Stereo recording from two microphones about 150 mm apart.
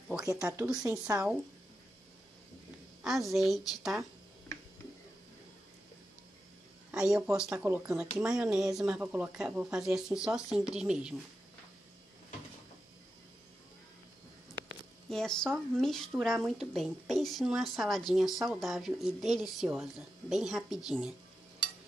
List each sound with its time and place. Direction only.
0.4 s speech: 15° right (ahead or behind)
3.0 s a sound: centre (ahead or behind)
3.3 s speech: centre (ahead or behind)
6.9 s speech: 5° right (ahead or behind)
15.0 s speech: 5° left (ahead or behind)